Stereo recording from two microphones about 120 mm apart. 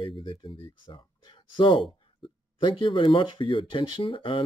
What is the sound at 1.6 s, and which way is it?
Speech, 45° left (ahead or behind).